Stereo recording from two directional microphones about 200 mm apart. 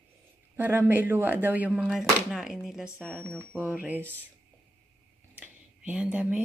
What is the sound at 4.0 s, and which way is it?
Speech, 10° left (ahead or behind).